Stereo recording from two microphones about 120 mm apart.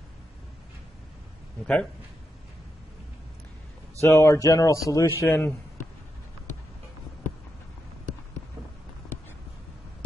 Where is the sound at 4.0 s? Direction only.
25° left (ahead or behind).